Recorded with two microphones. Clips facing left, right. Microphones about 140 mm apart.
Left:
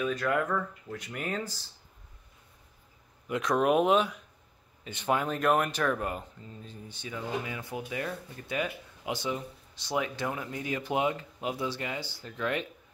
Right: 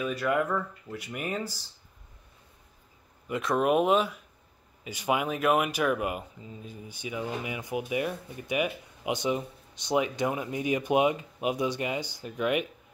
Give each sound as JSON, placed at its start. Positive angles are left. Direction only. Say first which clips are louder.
{"t": 0.0, "sound": "speech", "louder": "right 1 dB", "side_deg": -10}
{"t": 3.3, "sound": "speech", "louder": "even", "side_deg": 0}